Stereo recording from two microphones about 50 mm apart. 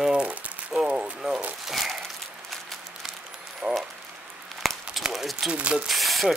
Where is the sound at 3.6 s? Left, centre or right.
Centre.